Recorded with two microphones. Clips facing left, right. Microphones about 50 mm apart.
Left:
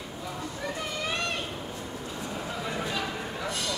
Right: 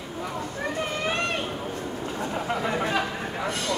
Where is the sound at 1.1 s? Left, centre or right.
Right.